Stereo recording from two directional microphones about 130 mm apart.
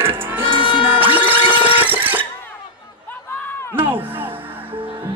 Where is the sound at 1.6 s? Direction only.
15° right (ahead or behind).